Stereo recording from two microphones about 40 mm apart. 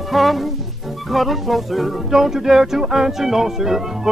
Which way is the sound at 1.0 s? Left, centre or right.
Centre.